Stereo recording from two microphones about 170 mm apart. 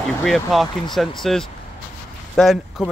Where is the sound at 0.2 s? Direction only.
Centre (ahead or behind).